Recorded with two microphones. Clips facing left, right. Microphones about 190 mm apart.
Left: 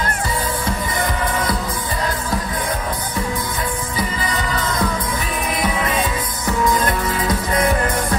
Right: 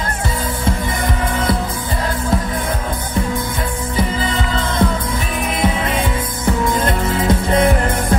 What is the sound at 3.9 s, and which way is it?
Music, 25° right (ahead or behind).